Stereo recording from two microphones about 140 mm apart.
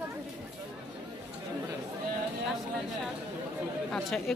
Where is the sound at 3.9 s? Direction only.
Centre (ahead or behind).